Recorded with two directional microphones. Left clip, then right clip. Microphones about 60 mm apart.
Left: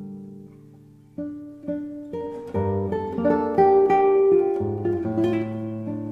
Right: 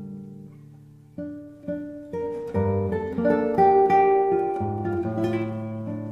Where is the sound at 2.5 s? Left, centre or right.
Centre.